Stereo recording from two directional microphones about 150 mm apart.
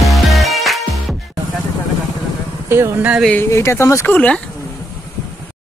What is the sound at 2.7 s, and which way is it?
Speech, 15° right (ahead or behind).